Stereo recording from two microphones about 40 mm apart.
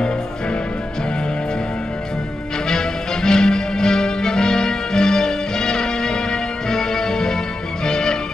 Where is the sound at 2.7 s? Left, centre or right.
Centre.